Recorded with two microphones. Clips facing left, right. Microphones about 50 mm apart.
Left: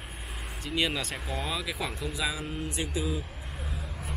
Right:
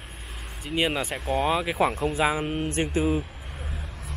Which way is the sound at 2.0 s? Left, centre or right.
Right.